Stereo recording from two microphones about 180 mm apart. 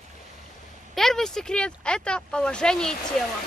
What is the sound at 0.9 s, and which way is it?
Speech, centre (ahead or behind).